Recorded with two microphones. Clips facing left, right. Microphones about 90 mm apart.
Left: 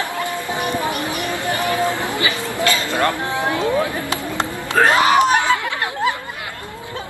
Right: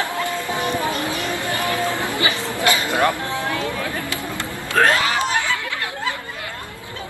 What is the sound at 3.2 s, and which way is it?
Speech, 20° left (ahead or behind).